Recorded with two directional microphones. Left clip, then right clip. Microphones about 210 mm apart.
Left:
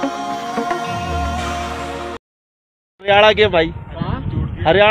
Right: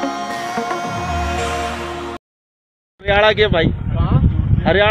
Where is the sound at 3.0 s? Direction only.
20° left (ahead or behind).